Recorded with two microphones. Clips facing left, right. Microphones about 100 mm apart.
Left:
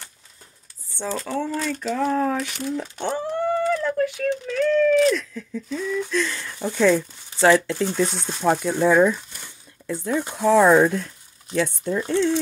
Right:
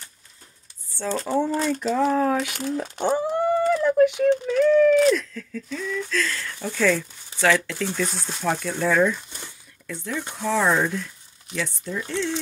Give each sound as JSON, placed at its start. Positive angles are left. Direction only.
{"t": 1.3, "sound": "speech", "side_deg": -15}
{"t": 1.9, "sound": "speech", "side_deg": -5}
{"t": 3.0, "sound": "a sound", "side_deg": -10}
{"t": 5.3, "sound": "speech", "side_deg": 15}
{"t": 7.3, "sound": "speech", "side_deg": 30}
{"t": 8.1, "sound": "speech", "side_deg": 0}
{"t": 8.5, "sound": "speech", "side_deg": 15}
{"t": 9.8, "sound": "speech", "side_deg": 35}
{"t": 10.5, "sound": "speech", "side_deg": 55}